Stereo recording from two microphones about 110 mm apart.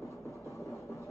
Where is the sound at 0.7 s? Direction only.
30° left (ahead or behind).